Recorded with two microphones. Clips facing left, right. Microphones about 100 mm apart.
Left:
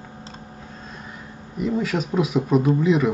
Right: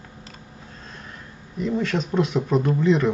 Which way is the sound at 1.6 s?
5° left (ahead or behind).